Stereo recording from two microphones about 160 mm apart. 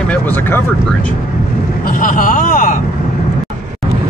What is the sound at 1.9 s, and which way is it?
Speech, 55° left (ahead or behind).